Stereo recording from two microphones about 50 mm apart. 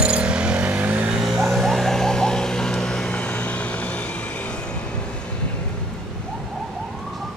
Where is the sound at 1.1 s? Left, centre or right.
Centre; by 4.5 s left.